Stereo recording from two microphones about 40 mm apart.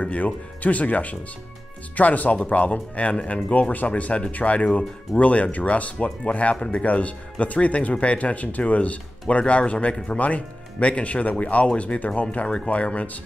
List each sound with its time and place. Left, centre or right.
0.0 s speech: left